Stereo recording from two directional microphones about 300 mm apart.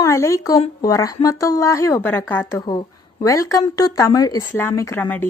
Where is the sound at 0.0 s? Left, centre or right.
Centre.